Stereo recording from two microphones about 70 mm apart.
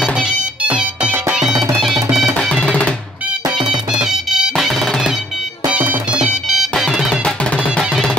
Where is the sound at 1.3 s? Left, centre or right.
Centre.